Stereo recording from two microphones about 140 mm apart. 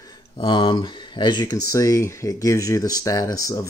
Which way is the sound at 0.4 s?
40° left (ahead or behind).